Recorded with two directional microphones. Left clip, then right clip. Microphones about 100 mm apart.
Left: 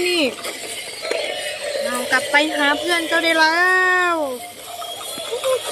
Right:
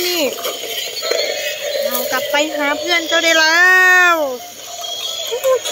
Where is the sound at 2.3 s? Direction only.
10° left (ahead or behind).